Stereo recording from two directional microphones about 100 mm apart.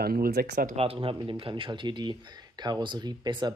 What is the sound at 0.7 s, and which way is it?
Speech, 70° right (ahead or behind).